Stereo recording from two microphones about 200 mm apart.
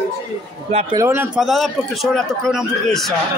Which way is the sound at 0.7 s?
30° right (ahead or behind).